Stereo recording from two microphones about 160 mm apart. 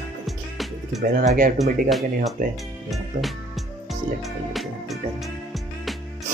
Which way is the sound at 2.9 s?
Centre (ahead or behind).